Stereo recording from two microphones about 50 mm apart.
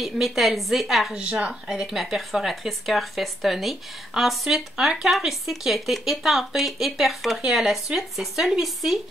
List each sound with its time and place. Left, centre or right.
0.0 s speech: centre
1.1 s a woman's voice: right
1.7 s speech: centre